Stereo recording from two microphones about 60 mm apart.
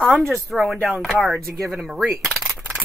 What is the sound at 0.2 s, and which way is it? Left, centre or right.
Speech, centre.